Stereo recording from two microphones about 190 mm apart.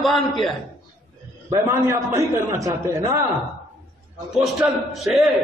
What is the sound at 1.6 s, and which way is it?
Speech, 15° right (ahead or behind).